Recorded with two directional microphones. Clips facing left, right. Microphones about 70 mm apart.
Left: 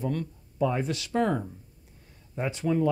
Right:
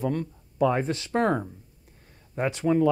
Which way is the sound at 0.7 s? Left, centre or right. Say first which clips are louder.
Right 3 dB; right.